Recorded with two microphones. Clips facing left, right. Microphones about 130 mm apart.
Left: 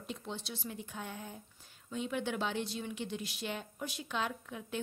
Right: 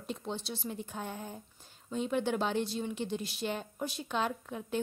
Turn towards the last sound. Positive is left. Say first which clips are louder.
# right 4 dB
turn(degrees=-35)  # may be behind; listen again after turning